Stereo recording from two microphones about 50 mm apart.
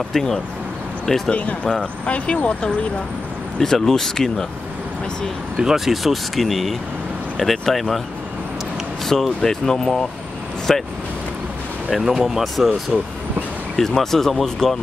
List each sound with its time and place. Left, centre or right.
0.1 s speech: centre
1.3 s speech: left
3.5 s speech: centre
5.6 s speech: centre
9.0 s speech: centre
11.9 s speech: centre
13.7 s speech: centre